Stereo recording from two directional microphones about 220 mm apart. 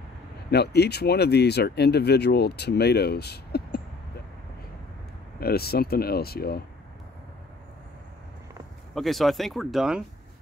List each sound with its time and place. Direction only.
0.5 s speech: 50° left (ahead or behind)
5.4 s speech: 45° left (ahead or behind)
8.9 s speech: centre (ahead or behind)